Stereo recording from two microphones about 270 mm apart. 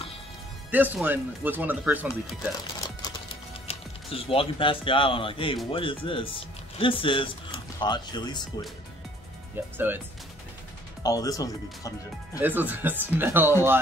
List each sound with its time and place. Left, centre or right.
0.7 s speech: centre
2.8 s music: centre
3.6 s speech: left
9.8 s speech: centre
11.0 s speech: centre
12.4 s speech: centre